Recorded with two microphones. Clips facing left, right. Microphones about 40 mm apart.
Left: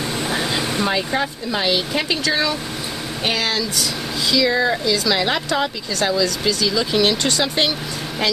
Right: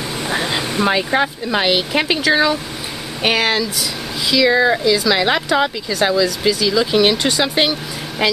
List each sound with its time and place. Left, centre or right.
0.2 s air conditioning: centre
0.9 s speech: right
4.8 s speech: centre